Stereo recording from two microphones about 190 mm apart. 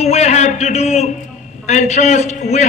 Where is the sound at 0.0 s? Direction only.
35° left (ahead or behind).